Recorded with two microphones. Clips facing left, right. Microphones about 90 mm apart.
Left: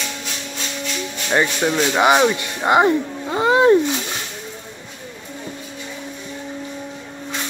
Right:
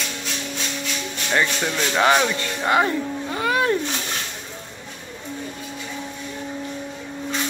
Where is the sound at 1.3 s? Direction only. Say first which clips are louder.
Left 4 dB; 15° left (ahead or behind).